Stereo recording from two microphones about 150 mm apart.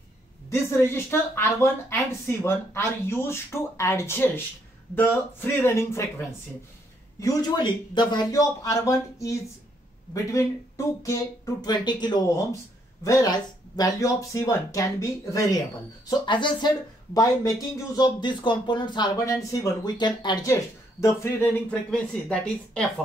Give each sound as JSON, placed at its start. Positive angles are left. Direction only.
{"t": 0.5, "sound": "speech", "side_deg": 15}
{"t": 7.2, "sound": "speech", "side_deg": 25}
{"t": 21.0, "sound": "speech", "side_deg": 15}